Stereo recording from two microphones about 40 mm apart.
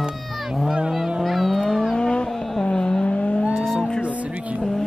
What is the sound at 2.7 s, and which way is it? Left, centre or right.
Vehicle, left.